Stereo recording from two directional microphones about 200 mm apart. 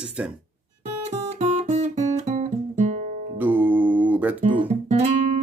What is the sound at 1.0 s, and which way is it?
Guitar, 35° right (ahead or behind).